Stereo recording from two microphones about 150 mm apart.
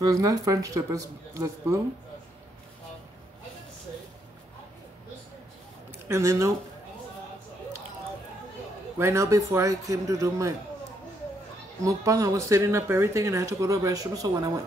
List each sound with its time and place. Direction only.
0.0 s speech: 25° right (ahead or behind)
6.0 s speech: 15° right (ahead or behind)
8.9 s speech: 20° right (ahead or behind)
11.8 s speech: 20° right (ahead or behind)